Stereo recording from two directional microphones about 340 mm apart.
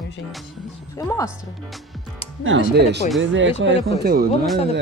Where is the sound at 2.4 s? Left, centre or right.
Right.